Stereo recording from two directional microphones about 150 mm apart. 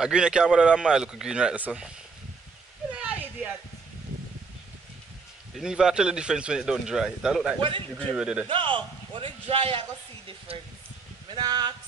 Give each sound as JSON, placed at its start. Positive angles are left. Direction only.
{"t": 0.0, "sound": "speech", "side_deg": -5}
{"t": 2.9, "sound": "a sound", "side_deg": -10}
{"t": 5.6, "sound": "speech", "side_deg": -5}
{"t": 8.5, "sound": "a man's voice", "side_deg": -35}
{"t": 11.3, "sound": "speech", "side_deg": -25}